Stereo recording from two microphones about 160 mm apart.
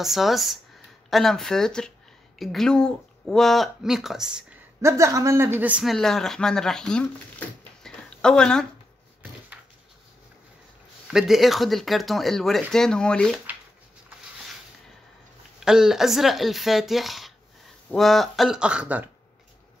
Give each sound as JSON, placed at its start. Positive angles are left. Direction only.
{"t": 0.0, "sound": "speech", "side_deg": 0}
{"t": 4.8, "sound": "speech", "side_deg": -20}
{"t": 11.1, "sound": "speech", "side_deg": -5}
{"t": 15.6, "sound": "speech", "side_deg": -5}